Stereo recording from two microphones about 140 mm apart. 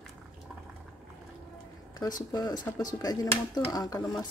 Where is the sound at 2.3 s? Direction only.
25° left (ahead or behind).